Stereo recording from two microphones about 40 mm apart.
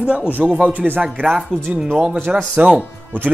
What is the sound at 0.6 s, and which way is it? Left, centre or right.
Speech, right.